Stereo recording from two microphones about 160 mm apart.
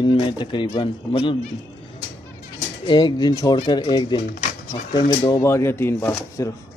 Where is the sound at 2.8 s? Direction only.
25° left (ahead or behind).